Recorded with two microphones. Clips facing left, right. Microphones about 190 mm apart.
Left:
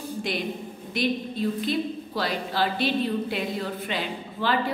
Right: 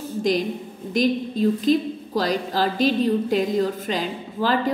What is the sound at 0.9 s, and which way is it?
A woman's voice, 40° right (ahead or behind).